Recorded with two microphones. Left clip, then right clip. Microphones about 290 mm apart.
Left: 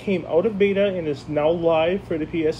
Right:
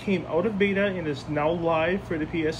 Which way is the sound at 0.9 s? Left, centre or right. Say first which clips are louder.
Left 5 dB; centre.